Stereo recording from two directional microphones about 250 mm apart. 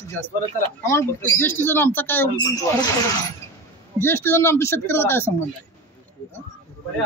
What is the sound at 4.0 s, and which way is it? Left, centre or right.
Speech, centre.